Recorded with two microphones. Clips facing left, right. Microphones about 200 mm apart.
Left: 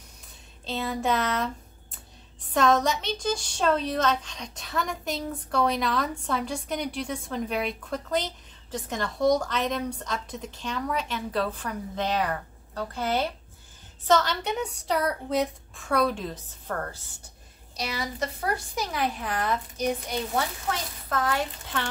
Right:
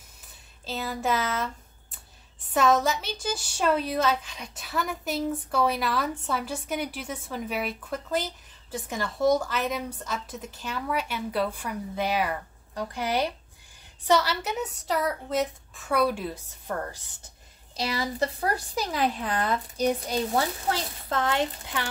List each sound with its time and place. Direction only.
0.7 s a woman's voice: 5° right (ahead or behind)
17.7 s a woman's voice: 35° right (ahead or behind)